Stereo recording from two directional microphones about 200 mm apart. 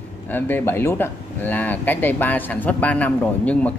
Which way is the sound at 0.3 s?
10° left (ahead or behind).